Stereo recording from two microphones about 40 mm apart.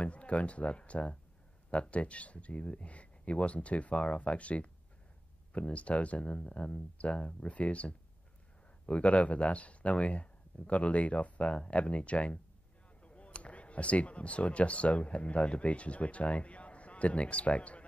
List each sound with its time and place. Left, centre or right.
0.0 s speech: left